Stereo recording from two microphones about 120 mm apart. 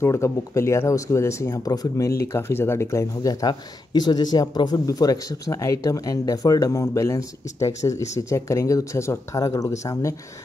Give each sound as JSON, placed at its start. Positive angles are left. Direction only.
{"t": 0.0, "sound": "speech", "side_deg": 25}